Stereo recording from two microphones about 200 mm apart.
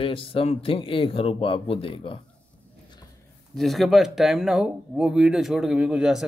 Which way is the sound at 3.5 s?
Centre (ahead or behind).